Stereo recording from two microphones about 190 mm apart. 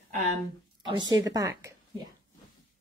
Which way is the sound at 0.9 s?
20° right (ahead or behind).